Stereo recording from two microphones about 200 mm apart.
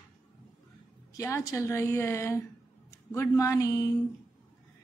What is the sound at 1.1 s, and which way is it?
A woman's voice, 15° left (ahead or behind).